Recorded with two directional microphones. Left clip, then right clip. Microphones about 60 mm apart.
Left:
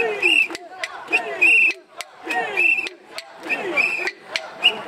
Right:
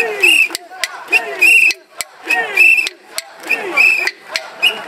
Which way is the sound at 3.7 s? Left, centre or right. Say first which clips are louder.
Right 11 dB; right.